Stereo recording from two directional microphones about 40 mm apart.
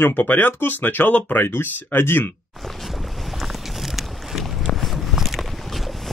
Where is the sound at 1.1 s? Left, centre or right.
Left.